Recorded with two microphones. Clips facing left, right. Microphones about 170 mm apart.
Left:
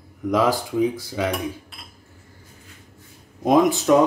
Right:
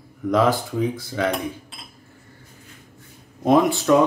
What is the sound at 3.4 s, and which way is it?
Speech, 15° left (ahead or behind).